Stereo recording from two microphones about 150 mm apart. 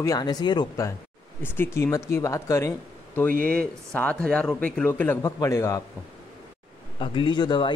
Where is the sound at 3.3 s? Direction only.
70° right (ahead or behind).